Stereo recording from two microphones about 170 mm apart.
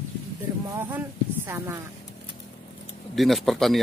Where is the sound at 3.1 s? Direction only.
Centre (ahead or behind).